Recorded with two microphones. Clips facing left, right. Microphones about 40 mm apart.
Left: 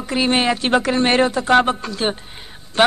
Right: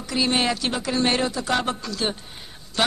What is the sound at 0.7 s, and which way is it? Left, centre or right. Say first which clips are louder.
A man's voice: left 6 dB; left.